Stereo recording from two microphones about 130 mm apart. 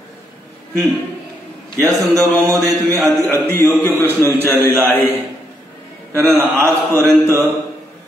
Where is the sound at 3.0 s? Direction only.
Centre (ahead or behind).